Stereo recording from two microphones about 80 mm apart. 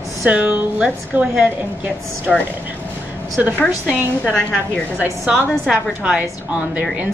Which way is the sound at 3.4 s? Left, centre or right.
Centre.